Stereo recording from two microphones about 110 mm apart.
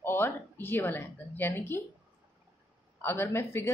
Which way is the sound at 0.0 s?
20° left (ahead or behind).